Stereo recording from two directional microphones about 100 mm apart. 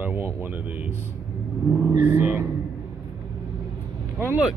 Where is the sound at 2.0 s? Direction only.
20° right (ahead or behind).